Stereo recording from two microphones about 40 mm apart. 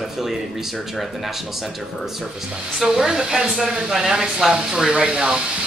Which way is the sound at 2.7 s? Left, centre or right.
Centre.